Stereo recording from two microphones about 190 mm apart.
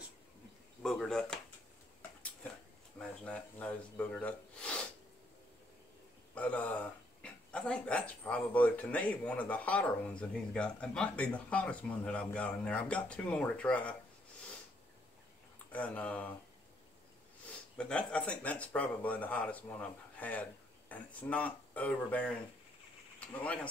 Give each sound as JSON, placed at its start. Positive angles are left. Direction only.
{"t": 0.8, "sound": "speech", "side_deg": 0}
{"t": 3.0, "sound": "speech", "side_deg": 5}
{"t": 6.3, "sound": "speech", "side_deg": 5}
{"t": 15.7, "sound": "speech", "side_deg": 10}
{"t": 17.7, "sound": "speech", "side_deg": 5}